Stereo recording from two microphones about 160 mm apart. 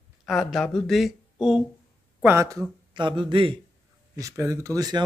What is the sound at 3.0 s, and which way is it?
Speech, 30° right (ahead or behind).